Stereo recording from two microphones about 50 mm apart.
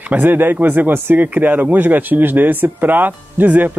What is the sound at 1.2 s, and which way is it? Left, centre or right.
Speech, right.